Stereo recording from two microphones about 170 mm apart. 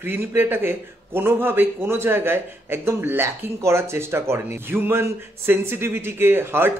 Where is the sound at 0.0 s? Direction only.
10° right (ahead or behind).